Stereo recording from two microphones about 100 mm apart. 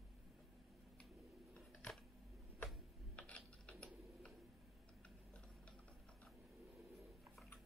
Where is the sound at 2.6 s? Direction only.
10° left (ahead or behind).